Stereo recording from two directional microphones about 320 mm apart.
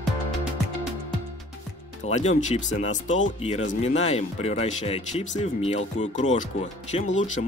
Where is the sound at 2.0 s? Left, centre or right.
Left.